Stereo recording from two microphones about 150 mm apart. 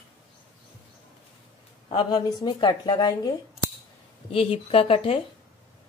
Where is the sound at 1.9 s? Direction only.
35° left (ahead or behind).